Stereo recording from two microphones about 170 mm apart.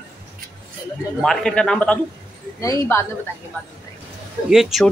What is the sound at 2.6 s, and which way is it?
Speech, 15° left (ahead or behind).